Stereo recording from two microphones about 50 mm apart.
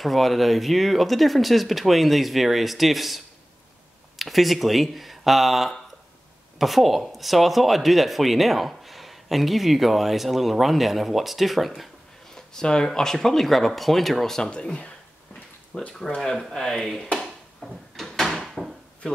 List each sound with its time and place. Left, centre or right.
0.0 s speech: centre
4.2 s speech: centre
12.4 s speech: centre
14.5 s speech: left
16.2 s speech: centre
17.9 s drawer open or close: centre